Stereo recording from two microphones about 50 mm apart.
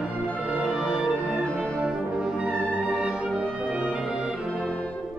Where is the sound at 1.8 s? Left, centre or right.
Centre.